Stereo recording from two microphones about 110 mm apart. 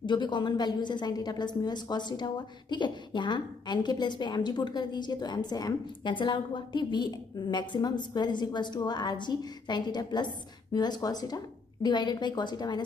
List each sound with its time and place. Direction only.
0.0 s a woman's voice: 45° left (ahead or behind)